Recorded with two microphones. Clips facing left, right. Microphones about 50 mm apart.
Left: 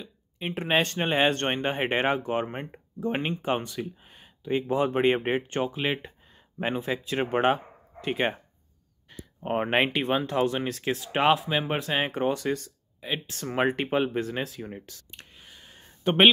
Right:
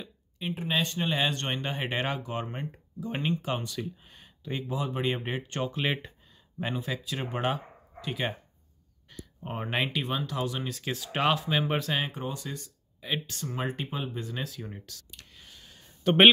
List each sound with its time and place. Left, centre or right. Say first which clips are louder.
0.7 s speech: left 5 dB; left; by 4.6 s centre
4.6 s speech: left 8 dB; left
5.6 s speech: left 2 dB; centre
6.6 s speech: left 4 dB; left
9.1 s a sound: left 9 dB; left
9.6 s speech: left 5 dB; left
11.1 s speech: left 4 dB; left
11.8 s speech: left 3 dB; left
12.1 s speech: left 10 dB; left
13.0 s speech: left 1 dB; centre
13.5 s speech: left 9 dB; left
14.3 s speech: left 4 dB; left
15.3 s a sound: left 2 dB; centre